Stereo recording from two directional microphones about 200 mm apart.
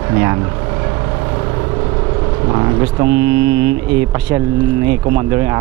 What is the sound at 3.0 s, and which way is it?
Speech, 10° right (ahead or behind).